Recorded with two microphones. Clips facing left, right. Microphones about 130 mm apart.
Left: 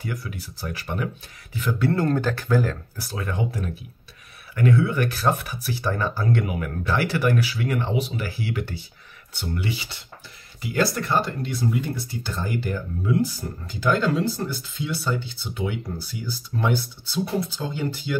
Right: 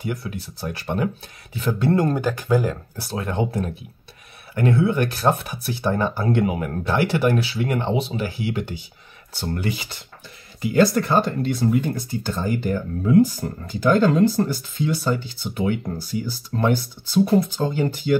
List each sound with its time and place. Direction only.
0.0 s speech: 25° right (ahead or behind)
9.4 s speech: 45° right (ahead or behind)